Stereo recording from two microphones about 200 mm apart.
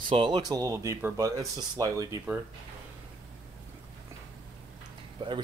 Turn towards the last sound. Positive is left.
turn(degrees=-20)  # may be behind; listen again after turning